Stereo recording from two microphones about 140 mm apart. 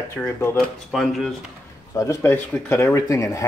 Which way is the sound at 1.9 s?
20° left (ahead or behind).